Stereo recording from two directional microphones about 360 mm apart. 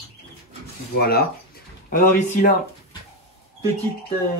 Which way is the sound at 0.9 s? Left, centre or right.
Left.